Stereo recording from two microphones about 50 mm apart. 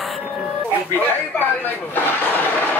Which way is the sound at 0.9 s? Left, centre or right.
Left.